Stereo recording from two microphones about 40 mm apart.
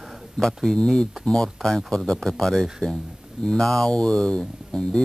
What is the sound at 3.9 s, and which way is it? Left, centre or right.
Speech, centre.